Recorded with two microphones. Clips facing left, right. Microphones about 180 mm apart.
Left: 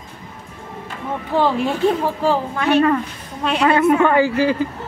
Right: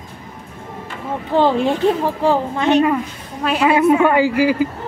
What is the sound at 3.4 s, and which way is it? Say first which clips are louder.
A woman's voice: right 1 dB; 5° right (ahead or behind).